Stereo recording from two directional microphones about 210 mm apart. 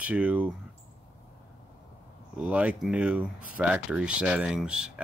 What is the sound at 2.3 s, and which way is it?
Speech, 5° right (ahead or behind).